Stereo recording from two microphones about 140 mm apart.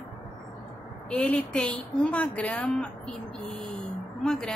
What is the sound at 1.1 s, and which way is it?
A woman's voice, 5° left (ahead or behind).